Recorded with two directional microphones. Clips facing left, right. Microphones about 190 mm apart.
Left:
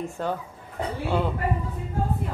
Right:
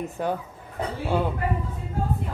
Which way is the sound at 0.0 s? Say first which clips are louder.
Right 1 dB; 15° right (ahead or behind).